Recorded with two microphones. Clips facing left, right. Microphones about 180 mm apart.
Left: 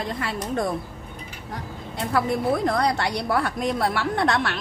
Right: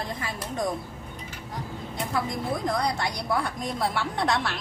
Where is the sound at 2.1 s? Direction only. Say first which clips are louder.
Left 7 dB; 70° left (ahead or behind).